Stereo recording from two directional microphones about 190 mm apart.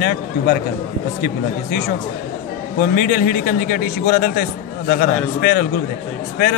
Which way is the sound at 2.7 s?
50° left (ahead or behind).